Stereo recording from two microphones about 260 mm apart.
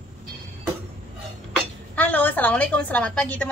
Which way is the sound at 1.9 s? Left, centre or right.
Centre.